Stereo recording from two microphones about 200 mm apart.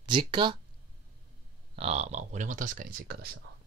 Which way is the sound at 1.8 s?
30° right (ahead or behind).